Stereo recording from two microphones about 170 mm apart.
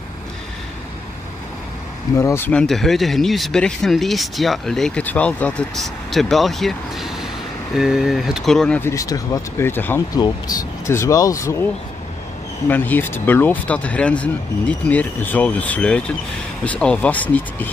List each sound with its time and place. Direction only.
2.1 s speech: 15° left (ahead or behind)
8.9 s speech: 20° left (ahead or behind)